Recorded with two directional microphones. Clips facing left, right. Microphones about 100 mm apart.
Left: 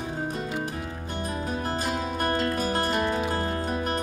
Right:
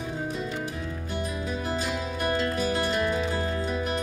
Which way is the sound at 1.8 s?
45° left (ahead or behind).